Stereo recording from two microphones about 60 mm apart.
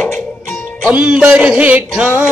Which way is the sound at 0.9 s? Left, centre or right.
Centre.